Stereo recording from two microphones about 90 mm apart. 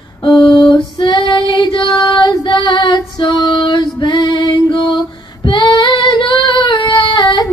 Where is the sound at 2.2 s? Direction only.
50° left (ahead or behind).